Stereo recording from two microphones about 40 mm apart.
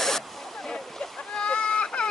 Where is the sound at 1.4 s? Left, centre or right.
Left.